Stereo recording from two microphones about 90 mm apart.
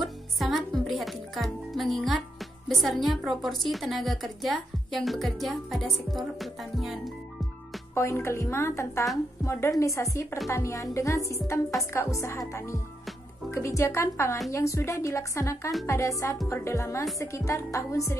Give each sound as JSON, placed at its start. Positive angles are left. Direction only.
{"t": 0.0, "sound": "music", "side_deg": 0}
{"t": 2.7, "sound": "a woman's voice", "side_deg": 0}
{"t": 7.9, "sound": "a woman's voice", "side_deg": 30}